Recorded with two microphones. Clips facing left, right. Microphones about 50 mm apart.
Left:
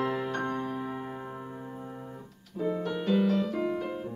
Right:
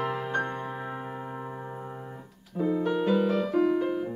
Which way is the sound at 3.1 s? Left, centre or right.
Right.